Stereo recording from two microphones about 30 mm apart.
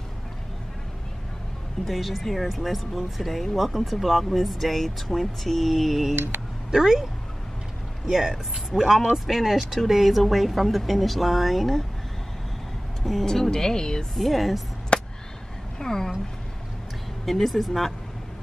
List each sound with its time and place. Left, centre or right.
1.9 s speech: centre
6.7 s speech: centre
8.1 s speech: centre
9.1 s speech: centre
13.0 s speech: centre
14.1 s speech: centre
14.9 s a sound: left
15.8 s speech: centre
17.3 s speech: centre